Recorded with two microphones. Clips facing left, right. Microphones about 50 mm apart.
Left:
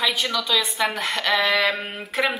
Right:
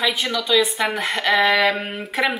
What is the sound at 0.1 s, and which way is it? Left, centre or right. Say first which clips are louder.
A woman's voice: right 3 dB; centre.